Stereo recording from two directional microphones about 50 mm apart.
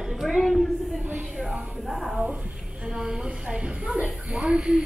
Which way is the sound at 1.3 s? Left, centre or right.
Centre.